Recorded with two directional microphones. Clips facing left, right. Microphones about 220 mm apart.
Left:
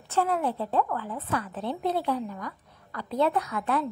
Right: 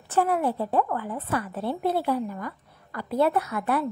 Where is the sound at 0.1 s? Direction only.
10° right (ahead or behind).